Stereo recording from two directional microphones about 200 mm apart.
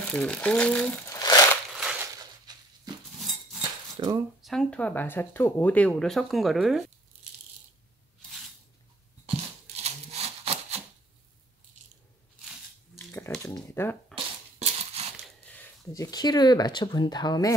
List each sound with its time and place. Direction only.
0.1 s speech: 5° left (ahead or behind)
1.1 s crumpling: 20° left (ahead or behind)
1.8 s crushing: 5° right (ahead or behind)
2.5 s a sound: 20° right (ahead or behind)
3.9 s a sound: 20° right (ahead or behind)
4.4 s speech: centre (ahead or behind)
9.8 s rub: 30° right (ahead or behind)
13.6 s a sound: 5° left (ahead or behind)
14.1 s crushing: 30° right (ahead or behind)
15.5 s speech: 15° left (ahead or behind)